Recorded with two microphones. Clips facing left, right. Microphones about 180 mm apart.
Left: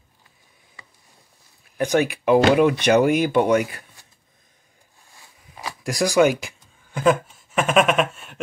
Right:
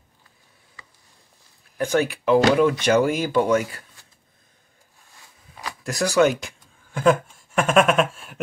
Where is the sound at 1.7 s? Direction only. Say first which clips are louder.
Left 1 dB; 15° left (ahead or behind).